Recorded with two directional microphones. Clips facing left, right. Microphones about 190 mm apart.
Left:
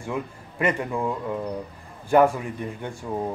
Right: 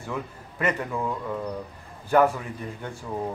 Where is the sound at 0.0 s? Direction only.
10° left (ahead or behind).